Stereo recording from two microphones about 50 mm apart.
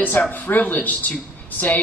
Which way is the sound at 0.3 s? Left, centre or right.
Left.